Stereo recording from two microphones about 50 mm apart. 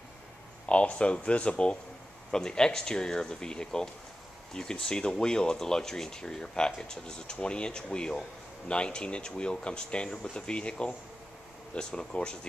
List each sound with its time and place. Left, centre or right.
0.7 s speech: left